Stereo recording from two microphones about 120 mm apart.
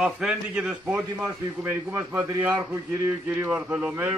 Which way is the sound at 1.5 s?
15° right (ahead or behind).